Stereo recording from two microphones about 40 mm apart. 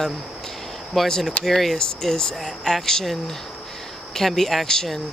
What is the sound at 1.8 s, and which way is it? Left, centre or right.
Speech, centre.